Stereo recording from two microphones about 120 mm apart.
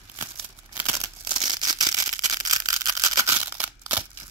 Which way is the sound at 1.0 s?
40° right (ahead or behind).